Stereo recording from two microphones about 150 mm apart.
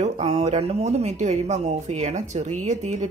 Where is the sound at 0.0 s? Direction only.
45° right (ahead or behind).